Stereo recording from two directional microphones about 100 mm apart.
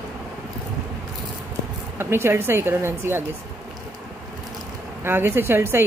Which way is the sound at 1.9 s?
25° right (ahead or behind).